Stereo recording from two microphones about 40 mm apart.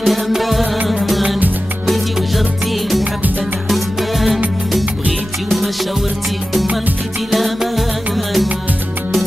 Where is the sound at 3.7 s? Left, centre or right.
Centre.